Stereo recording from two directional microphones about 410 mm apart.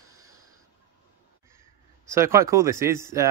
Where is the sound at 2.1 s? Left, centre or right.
Centre.